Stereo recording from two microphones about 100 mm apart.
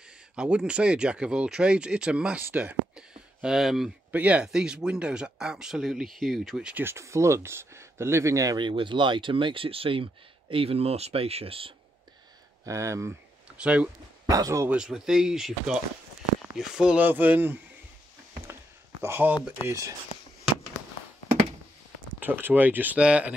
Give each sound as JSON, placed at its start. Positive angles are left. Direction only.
{"t": 0.4, "sound": "speech", "side_deg": -10}
{"t": 3.4, "sound": "speech", "side_deg": -5}
{"t": 4.1, "sound": "speech", "side_deg": -15}
{"t": 6.8, "sound": "speech", "side_deg": -25}
{"t": 8.5, "sound": "speech", "side_deg": -55}
{"t": 12.6, "sound": "speech", "side_deg": -30}
{"t": 13.6, "sound": "speech", "side_deg": -10}
{"t": 14.3, "sound": "speech", "side_deg": -35}
{"t": 14.7, "sound": "speech", "side_deg": -5}
{"t": 18.5, "sound": "a sound", "side_deg": -25}
{"t": 22.2, "sound": "speech", "side_deg": -20}